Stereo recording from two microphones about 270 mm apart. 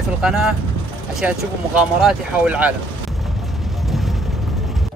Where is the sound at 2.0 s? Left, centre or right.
Centre.